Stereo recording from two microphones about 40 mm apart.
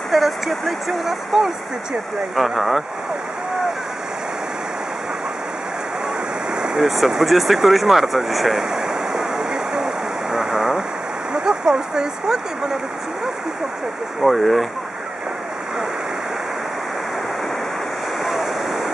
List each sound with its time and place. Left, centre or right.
0.1 s speech: centre
6.5 s ocean: right
6.8 s speech: centre
8.7 s waves: centre
10.3 s a sound: centre
11.3 s speech: centre
14.2 s speech: centre
18.2 s waves: centre